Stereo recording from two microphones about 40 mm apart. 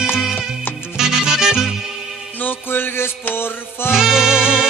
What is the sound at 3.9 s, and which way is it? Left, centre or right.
Music, centre.